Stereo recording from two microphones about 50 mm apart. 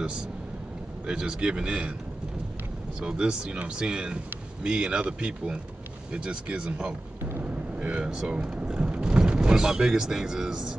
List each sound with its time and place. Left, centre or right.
1.0 s speech: centre
3.0 s speech: centre